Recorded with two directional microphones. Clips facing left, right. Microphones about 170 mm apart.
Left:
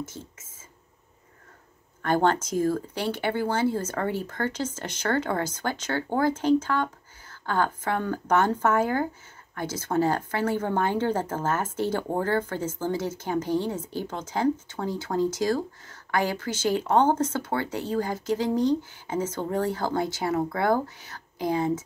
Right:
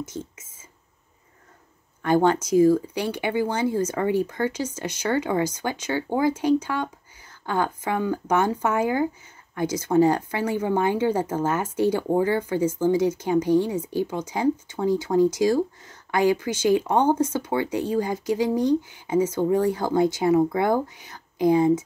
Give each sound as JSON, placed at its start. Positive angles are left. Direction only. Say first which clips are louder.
{"t": 0.0, "sound": "speech", "louder": "right 4 dB", "side_deg": -15}
{"t": 2.0, "sound": "speech", "louder": "right 3 dB", "side_deg": -15}